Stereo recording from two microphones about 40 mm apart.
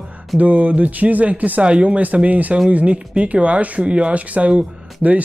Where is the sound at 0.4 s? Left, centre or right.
Right.